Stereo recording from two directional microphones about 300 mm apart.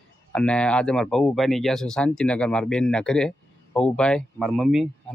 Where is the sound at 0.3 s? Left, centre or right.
Centre.